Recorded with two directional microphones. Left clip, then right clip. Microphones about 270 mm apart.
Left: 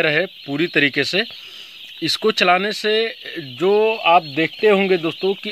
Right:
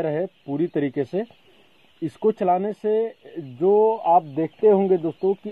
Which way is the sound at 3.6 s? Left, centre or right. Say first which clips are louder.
Left 1 dB; left.